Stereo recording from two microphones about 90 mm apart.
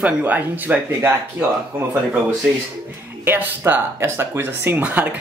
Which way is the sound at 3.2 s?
25° right (ahead or behind).